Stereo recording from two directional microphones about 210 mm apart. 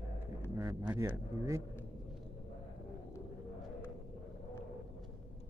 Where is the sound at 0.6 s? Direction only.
15° right (ahead or behind).